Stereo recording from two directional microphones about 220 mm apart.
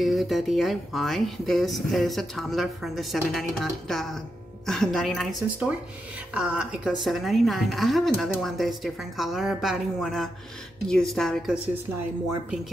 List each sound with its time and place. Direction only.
0.0 s speech: centre (ahead or behind)